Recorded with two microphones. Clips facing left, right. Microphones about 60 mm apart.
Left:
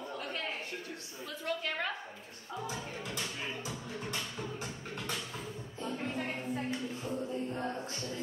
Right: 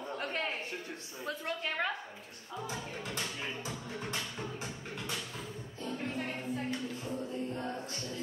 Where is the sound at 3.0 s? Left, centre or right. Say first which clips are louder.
Right 2 dB; right.